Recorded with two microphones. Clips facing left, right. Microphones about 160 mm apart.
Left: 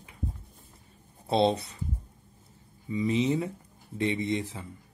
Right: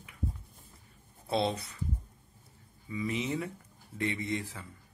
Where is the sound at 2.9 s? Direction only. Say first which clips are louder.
Left 7 dB; 25° left (ahead or behind).